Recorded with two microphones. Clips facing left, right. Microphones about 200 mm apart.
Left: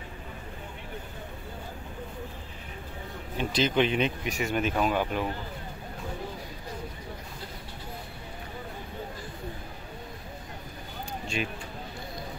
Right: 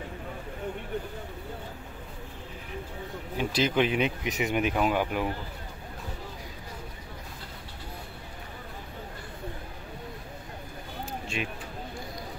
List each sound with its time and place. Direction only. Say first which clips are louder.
3.3 s speech: even; 10° right (ahead or behind)
11.4 s speech: left 2 dB; centre (ahead or behind)